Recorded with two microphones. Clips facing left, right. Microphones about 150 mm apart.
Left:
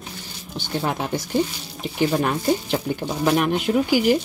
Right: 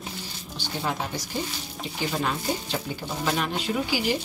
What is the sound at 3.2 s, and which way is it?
Speech, 55° left (ahead or behind).